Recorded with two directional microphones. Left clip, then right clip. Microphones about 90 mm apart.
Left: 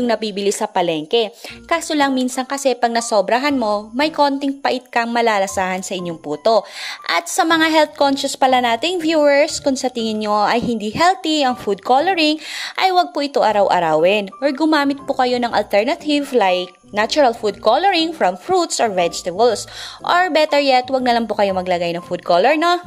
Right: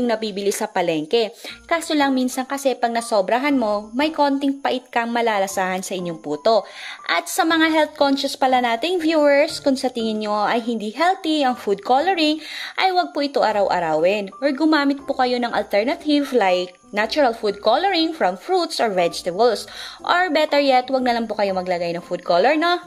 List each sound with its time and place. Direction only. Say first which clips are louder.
0.0 s a woman's voice: left 3 dB; 30° left (ahead or behind)
0.6 s a woman's voice: left 3 dB; 15° left (ahead or behind)
17.2 s a woman's voice: left 3 dB; 20° left (ahead or behind)
18.9 s a woman's voice: left 2 dB; 15° left (ahead or behind)